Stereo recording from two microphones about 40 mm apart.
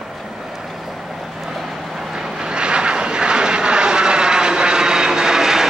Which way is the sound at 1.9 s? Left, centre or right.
Centre.